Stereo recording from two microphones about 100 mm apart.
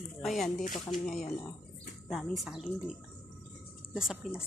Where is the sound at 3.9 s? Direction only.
5° right (ahead or behind).